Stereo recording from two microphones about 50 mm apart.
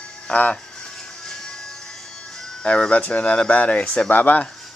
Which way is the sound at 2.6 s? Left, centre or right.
Left.